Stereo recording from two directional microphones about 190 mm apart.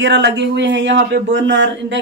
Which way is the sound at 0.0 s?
65° right (ahead or behind).